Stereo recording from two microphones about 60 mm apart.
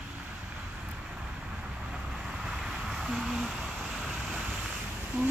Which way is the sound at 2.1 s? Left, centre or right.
Centre.